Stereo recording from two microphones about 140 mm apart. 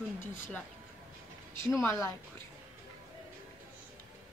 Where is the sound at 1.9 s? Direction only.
20° left (ahead or behind).